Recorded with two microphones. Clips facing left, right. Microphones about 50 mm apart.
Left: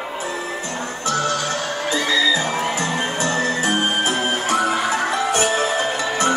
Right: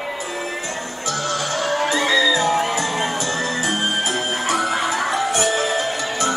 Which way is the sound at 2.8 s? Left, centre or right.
Left.